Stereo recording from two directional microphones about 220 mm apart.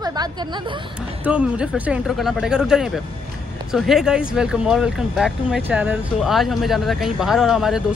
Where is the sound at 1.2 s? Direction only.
5° right (ahead or behind).